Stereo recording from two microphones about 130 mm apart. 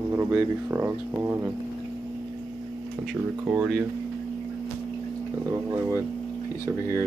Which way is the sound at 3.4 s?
15° right (ahead or behind).